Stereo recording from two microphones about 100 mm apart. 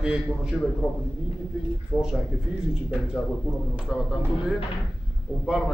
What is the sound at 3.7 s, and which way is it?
Speech, 10° right (ahead or behind).